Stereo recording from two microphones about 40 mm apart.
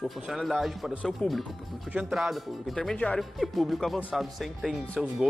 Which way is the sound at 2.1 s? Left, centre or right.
Centre.